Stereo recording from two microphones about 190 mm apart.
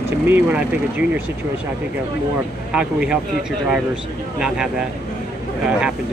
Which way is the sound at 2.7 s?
5° right (ahead or behind).